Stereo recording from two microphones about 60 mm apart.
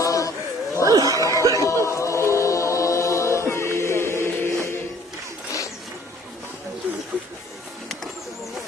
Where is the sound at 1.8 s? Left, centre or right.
Left.